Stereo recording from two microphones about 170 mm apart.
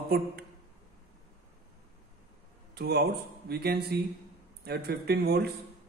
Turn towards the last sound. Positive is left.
turn(degrees=-70)  # may be behind; listen again after turning